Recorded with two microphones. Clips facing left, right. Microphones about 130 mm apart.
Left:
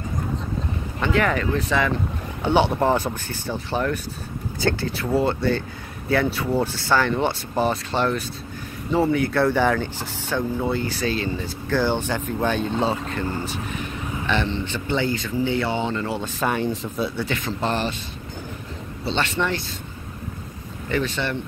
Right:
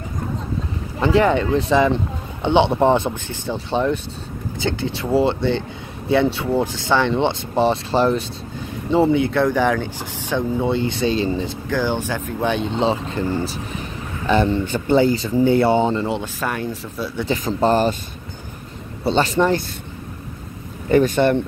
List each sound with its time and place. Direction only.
1.0 s speech: 30° right (ahead or behind)
5.1 s speech: 25° right (ahead or behind)
9.5 s speech: 10° right (ahead or behind); by 11.5 s 30° right (ahead or behind)
11.7 s speech: 15° right (ahead or behind); by 15.9 s 45° right (ahead or behind)
15.9 s speech: 25° right (ahead or behind)
16.3 s speech: centre (ahead or behind)
17.3 s speech: 40° right (ahead or behind)
19.0 s speech: 40° right (ahead or behind)
20.9 s speech: 50° right (ahead or behind)